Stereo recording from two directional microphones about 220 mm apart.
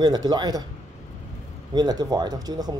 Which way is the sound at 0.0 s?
20° right (ahead or behind).